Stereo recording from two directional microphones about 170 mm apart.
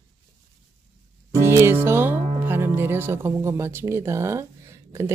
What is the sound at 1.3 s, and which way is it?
Speech, 15° right (ahead or behind).